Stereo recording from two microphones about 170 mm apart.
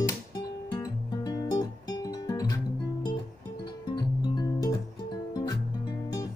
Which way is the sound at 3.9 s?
20° left (ahead or behind).